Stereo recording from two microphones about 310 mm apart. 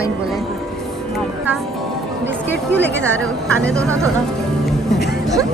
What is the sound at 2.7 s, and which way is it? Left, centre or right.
Speech, left.